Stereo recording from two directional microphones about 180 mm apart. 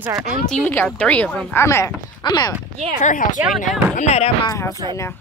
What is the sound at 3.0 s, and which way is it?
Speech, 45° left (ahead or behind).